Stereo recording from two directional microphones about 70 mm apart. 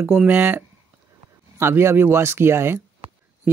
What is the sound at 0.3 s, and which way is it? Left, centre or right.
Speech, right.